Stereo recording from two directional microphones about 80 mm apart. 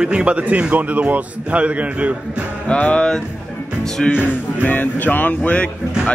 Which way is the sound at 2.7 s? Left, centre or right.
Centre.